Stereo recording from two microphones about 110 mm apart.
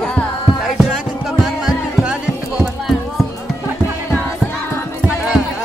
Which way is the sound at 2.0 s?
5° right (ahead or behind).